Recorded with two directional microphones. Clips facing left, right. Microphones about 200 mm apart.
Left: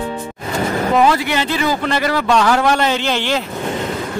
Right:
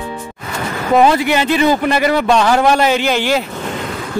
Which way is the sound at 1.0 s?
20° right (ahead or behind).